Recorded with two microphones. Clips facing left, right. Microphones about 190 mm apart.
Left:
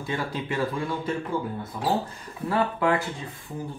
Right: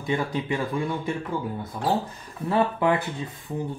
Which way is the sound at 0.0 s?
20° right (ahead or behind).